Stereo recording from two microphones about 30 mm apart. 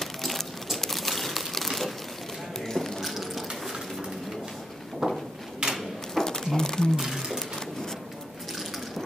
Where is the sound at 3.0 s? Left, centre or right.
Centre.